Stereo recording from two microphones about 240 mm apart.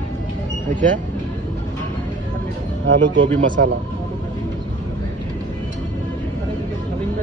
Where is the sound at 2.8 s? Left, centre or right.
Right.